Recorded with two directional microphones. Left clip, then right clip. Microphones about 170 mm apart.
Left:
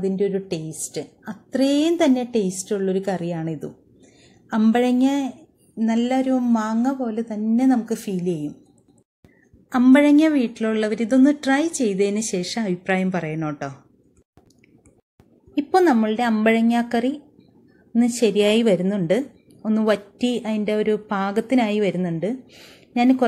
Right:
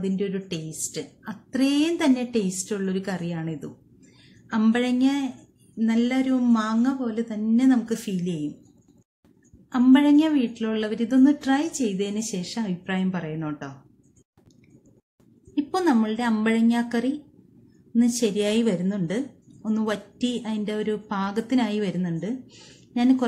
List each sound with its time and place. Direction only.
0.0 s a woman's voice: 20° left (ahead or behind)
9.7 s a woman's voice: 25° left (ahead or behind)
15.5 s a woman's voice: 20° left (ahead or behind)